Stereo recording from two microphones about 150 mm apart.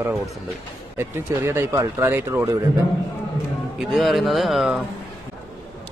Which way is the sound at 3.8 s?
Centre (ahead or behind).